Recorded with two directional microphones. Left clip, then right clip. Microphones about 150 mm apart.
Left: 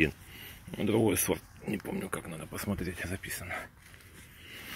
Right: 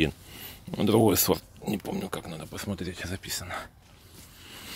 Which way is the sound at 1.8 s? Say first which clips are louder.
Right 3 dB; 15° right (ahead or behind).